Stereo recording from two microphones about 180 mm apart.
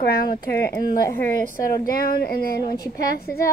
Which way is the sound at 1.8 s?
55° left (ahead or behind).